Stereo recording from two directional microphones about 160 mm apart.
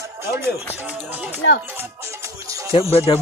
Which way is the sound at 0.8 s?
10° right (ahead or behind).